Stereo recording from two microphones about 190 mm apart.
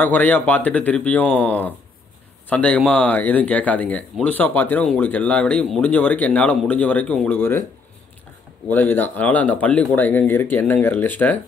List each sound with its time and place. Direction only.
0.0 s speech: 10° left (ahead or behind)
8.6 s speech: 10° left (ahead or behind)